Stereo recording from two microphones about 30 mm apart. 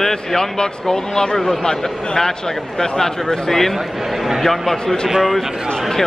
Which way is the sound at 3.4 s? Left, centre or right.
Centre.